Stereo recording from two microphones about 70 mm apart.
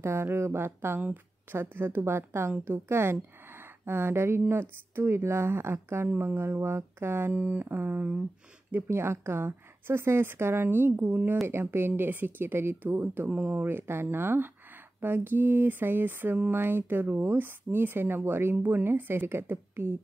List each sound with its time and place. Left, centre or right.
0.0 s speech: right
7.3 s speech: right